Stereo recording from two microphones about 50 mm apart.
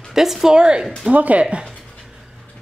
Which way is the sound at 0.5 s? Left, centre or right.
Centre.